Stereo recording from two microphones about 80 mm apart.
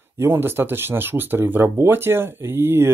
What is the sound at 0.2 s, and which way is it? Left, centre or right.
Speech, right.